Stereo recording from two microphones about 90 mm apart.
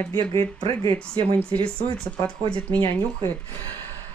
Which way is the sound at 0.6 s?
90° right.